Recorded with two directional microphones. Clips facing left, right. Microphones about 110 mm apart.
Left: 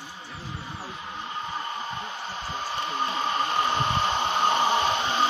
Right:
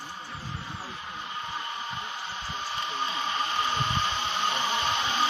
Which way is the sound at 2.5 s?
30° left (ahead or behind).